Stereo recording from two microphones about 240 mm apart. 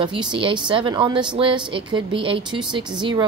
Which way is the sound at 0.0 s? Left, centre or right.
Centre.